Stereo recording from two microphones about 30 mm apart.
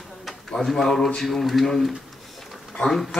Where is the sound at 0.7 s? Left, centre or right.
Centre.